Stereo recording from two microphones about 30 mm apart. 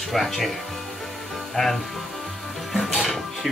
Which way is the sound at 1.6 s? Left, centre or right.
Left.